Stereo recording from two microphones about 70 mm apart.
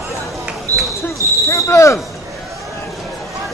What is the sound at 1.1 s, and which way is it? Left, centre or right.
Basketball bounce, left.